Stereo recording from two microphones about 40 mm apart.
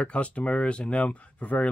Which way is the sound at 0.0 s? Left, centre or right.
Left.